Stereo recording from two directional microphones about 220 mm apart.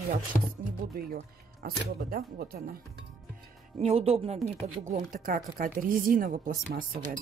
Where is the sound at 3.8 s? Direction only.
30° right (ahead or behind).